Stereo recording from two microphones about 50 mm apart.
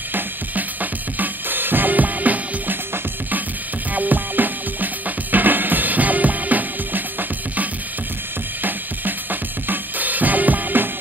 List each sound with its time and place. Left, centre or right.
0.1 s drum kit: right
3.9 s music: right
8.6 s music: right